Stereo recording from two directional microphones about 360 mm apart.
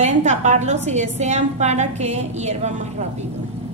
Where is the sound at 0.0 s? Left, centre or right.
Centre.